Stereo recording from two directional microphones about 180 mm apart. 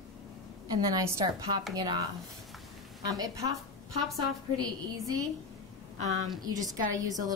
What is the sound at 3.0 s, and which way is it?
Speech, 20° right (ahead or behind).